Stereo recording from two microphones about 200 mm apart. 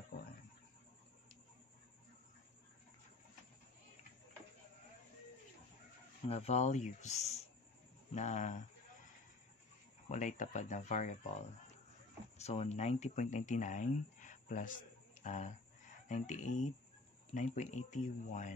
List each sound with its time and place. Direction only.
6.2 s speech: 30° left (ahead or behind)
10.0 s speech: 40° left (ahead or behind)
12.4 s speech: 35° left (ahead or behind)